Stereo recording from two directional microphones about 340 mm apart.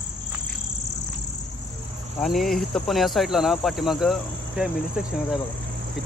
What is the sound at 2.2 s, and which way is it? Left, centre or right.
Cricket, centre.